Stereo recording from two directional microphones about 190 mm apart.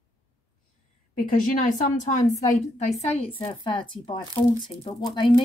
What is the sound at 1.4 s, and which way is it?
A woman's voice, 45° left (ahead or behind).